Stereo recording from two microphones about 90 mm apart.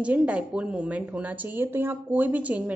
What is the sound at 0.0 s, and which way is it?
A woman's voice, 15° right (ahead or behind).